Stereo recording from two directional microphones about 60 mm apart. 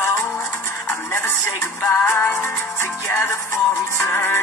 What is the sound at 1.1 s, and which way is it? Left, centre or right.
Music, left.